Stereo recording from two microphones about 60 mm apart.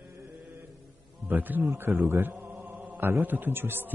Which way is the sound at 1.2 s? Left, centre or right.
Right.